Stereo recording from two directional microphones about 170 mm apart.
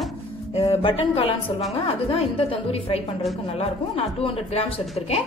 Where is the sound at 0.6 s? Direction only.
35° left (ahead or behind).